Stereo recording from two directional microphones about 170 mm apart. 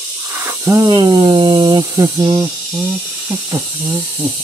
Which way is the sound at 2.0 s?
25° right (ahead or behind).